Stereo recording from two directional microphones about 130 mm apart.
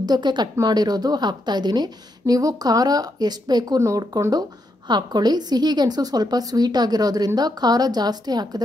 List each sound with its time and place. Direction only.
0.0 s a woman's voice: 35° right (ahead or behind)